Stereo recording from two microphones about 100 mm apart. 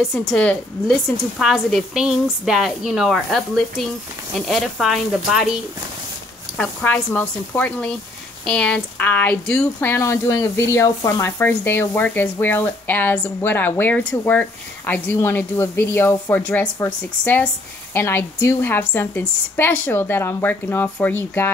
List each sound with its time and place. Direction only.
0.1 s a woman's voice: centre (ahead or behind)
6.5 s a woman's voice: 15° left (ahead or behind)